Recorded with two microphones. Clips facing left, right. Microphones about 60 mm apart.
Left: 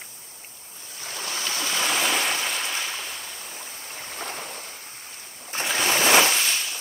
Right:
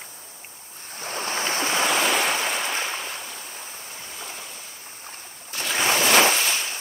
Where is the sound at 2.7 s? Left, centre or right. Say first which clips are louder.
Right 3 dB; right.